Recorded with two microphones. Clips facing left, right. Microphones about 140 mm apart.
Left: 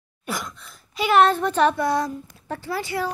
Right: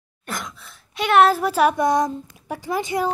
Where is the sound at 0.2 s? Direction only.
10° left (ahead or behind).